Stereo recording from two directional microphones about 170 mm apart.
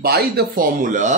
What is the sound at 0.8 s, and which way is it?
Speech, 45° right (ahead or behind).